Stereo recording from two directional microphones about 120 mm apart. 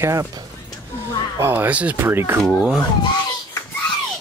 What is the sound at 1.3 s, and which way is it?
Speech, 20° right (ahead or behind).